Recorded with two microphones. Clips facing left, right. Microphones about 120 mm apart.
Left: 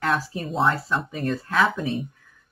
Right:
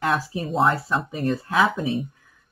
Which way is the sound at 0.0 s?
5° right (ahead or behind).